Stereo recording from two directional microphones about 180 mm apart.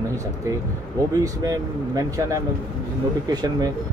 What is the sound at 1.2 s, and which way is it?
Speech, 20° right (ahead or behind).